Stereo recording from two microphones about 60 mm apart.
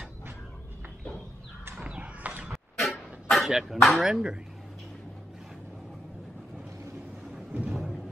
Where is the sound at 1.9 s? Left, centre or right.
Right.